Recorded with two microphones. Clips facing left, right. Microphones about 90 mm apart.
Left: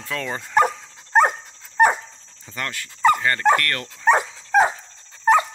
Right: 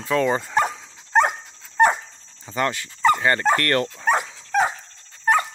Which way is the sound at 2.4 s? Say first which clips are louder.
Right 7 dB; 20° right (ahead or behind).